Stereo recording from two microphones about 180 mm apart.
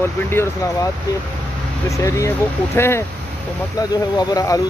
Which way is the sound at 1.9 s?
15° left (ahead or behind).